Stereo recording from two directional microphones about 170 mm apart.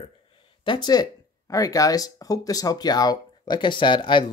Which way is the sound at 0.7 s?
25° left (ahead or behind).